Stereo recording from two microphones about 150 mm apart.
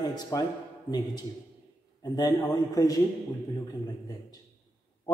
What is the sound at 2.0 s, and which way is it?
Speech, 25° left (ahead or behind).